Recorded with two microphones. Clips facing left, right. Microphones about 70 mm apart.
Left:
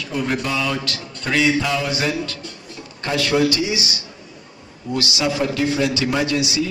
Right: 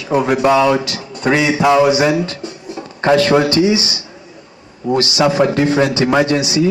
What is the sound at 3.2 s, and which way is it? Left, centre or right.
Speech, right.